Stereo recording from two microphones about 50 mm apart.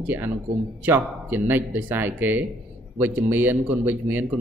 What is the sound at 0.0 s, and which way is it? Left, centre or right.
Speech, right.